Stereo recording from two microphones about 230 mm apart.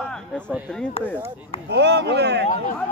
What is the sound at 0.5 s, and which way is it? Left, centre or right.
Speech, centre.